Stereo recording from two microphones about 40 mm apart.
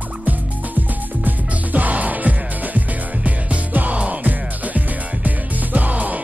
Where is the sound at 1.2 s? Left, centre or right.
Right.